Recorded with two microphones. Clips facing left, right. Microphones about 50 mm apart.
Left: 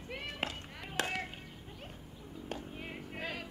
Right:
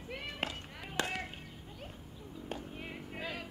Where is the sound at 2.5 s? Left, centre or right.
Centre.